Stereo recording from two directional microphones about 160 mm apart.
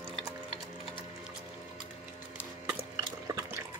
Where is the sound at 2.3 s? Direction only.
10° right (ahead or behind).